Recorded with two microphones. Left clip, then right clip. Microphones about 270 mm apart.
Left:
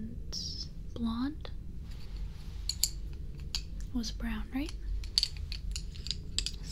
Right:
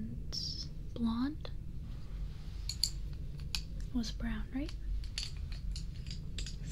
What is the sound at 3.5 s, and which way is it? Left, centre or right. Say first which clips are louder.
Speech: left 2 dB; centre.